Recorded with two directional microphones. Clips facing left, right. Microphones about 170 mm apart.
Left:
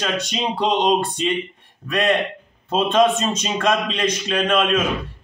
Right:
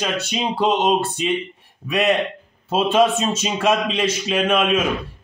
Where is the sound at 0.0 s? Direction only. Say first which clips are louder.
Even; 5° right (ahead or behind).